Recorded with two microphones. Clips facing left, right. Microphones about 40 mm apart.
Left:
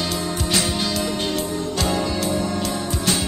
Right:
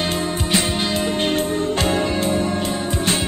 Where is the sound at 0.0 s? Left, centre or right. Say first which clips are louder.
Right 2 dB; right.